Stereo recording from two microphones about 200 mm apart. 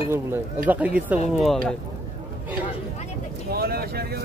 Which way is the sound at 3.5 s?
50° right (ahead or behind).